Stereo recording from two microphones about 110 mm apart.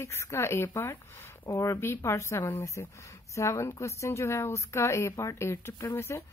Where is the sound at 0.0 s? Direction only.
25° left (ahead or behind).